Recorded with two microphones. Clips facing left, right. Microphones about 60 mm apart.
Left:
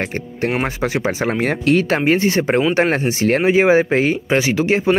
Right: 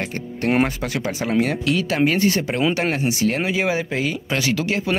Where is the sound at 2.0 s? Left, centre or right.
Left.